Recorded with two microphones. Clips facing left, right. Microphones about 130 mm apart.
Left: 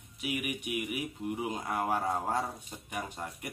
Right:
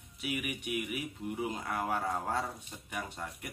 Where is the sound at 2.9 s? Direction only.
15° left (ahead or behind).